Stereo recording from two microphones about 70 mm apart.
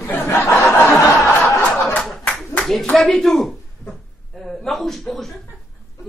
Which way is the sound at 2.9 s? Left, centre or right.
Centre.